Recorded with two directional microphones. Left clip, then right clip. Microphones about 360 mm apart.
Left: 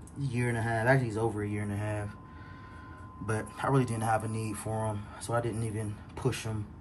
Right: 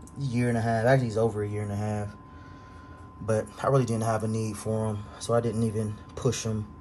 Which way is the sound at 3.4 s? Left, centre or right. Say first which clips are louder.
Right 4 dB; centre.